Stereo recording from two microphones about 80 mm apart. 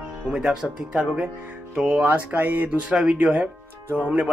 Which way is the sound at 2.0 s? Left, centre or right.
Right.